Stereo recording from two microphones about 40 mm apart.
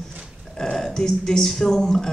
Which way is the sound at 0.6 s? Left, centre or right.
Centre.